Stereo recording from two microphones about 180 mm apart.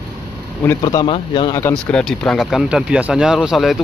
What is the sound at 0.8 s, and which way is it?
Speech, 25° left (ahead or behind).